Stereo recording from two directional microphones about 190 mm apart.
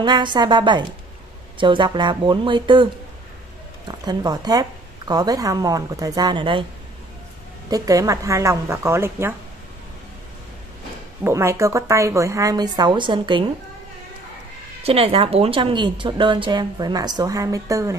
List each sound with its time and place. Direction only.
0.0 s a woman's voice: 25° right (ahead or behind)
7.7 s a woman's voice: 15° right (ahead or behind)
11.2 s a woman's voice: 15° right (ahead or behind)
14.8 s a woman's voice: 30° right (ahead or behind)